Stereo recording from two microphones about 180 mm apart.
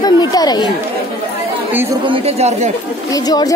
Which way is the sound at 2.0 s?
30° right (ahead or behind).